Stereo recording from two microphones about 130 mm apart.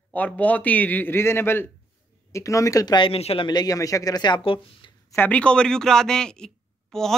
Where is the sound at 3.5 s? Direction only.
30° left (ahead or behind).